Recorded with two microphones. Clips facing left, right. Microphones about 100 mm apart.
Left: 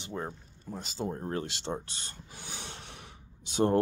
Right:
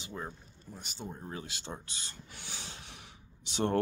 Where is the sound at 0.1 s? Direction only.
50° left (ahead or behind).